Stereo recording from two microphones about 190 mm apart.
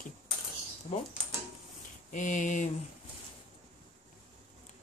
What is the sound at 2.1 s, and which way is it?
Speech, 40° left (ahead or behind).